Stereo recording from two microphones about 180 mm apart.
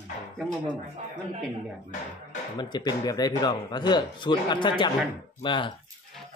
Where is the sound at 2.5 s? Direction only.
25° left (ahead or behind).